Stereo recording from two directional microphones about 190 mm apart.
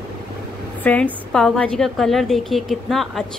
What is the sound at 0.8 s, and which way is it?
A woman's voice, 10° left (ahead or behind).